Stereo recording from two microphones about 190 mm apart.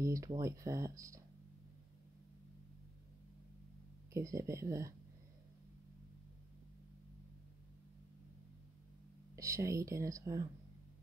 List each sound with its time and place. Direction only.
0.0 s speech: 15° right (ahead or behind)
4.1 s speech: 15° right (ahead or behind)
9.3 s speech: 15° right (ahead or behind)